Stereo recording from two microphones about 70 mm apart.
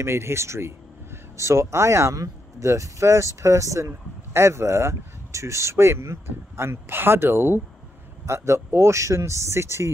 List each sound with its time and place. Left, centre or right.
0.0 s speech: right